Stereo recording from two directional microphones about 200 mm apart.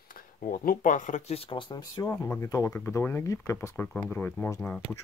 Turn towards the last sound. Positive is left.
turn(degrees=5)  # may be behind; listen again after turning